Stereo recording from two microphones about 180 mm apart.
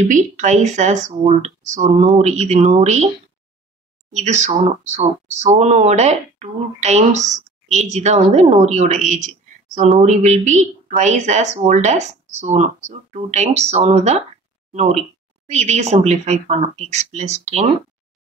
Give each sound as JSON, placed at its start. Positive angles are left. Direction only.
{"t": 0.1, "sound": "speech", "side_deg": -40}
{"t": 4.1, "sound": "speech", "side_deg": -40}